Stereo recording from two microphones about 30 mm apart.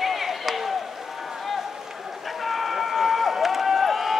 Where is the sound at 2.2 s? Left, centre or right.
Centre.